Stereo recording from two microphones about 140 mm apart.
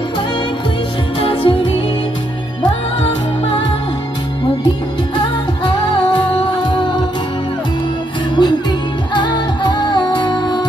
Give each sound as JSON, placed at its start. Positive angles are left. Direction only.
{"t": 1.2, "sound": "music", "side_deg": 40}
{"t": 8.4, "sound": "music", "side_deg": 35}